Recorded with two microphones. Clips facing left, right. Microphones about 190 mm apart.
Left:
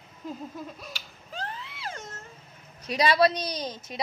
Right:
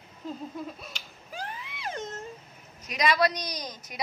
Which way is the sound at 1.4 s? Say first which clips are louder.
Even; 15° right (ahead or behind).